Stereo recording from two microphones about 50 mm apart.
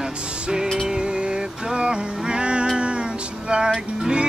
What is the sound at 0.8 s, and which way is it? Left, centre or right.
Music, centre.